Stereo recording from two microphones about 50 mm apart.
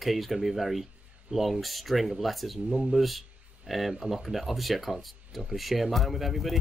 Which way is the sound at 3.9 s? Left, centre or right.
Centre.